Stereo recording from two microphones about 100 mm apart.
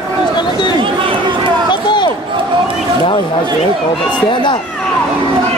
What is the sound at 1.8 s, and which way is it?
Crowd, 50° left (ahead or behind).